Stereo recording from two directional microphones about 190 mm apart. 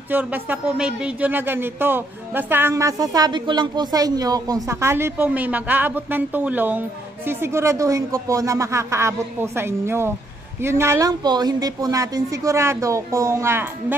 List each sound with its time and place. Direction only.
0.1 s speech: 10° right (ahead or behind)